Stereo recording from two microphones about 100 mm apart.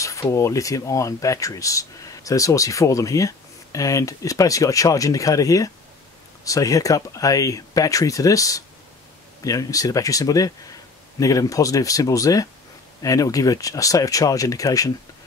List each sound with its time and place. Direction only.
0.0 s speech: 30° left (ahead or behind)